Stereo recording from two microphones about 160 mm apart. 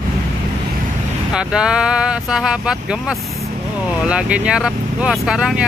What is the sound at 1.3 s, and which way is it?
Speech, 5° right (ahead or behind).